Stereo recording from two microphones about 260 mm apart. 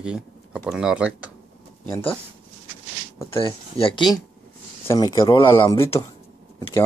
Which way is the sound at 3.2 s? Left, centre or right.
Centre.